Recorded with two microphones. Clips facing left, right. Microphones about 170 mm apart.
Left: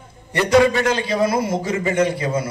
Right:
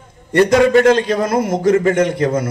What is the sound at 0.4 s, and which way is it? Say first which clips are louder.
A man's voice: right 5 dB; 55° right (ahead or behind).